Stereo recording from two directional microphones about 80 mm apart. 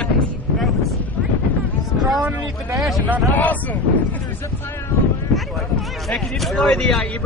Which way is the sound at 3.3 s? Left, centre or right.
Left.